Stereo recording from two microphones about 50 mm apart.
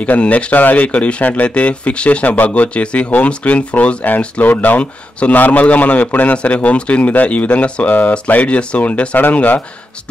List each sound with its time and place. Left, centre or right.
0.0 s speech: left